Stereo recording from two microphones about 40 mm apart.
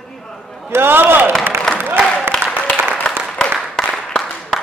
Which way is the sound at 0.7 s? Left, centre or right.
Right.